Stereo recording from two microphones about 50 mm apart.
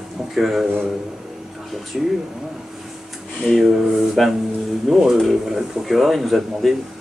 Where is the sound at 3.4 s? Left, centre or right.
Centre.